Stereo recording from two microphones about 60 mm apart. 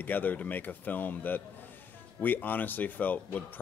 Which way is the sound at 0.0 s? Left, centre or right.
Left.